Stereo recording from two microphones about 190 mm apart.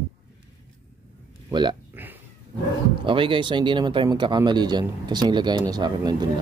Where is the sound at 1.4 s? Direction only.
25° right (ahead or behind).